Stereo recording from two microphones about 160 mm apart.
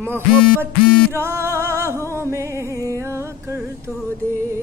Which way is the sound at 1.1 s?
15° right (ahead or behind).